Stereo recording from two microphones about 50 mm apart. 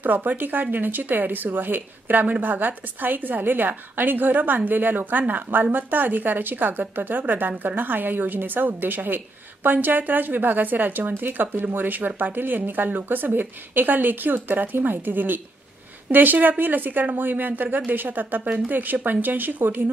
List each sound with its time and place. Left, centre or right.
0.0 s a woman's voice: right